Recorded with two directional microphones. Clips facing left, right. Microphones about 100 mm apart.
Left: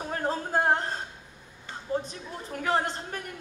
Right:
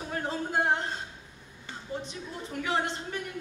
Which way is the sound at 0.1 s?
40° left (ahead or behind).